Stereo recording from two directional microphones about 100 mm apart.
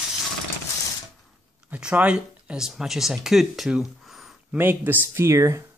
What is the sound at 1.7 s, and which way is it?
Speech, 10° right (ahead or behind).